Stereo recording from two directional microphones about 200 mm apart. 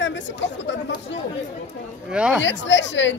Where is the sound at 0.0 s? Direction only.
65° left (ahead or behind).